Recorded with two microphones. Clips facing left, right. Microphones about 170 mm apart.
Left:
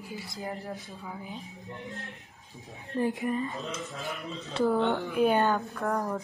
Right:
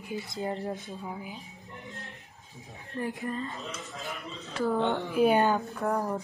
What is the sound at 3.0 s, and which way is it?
Speech, 20° left (ahead or behind).